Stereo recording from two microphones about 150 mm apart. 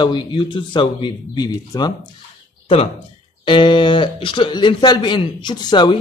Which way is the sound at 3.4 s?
35° left (ahead or behind).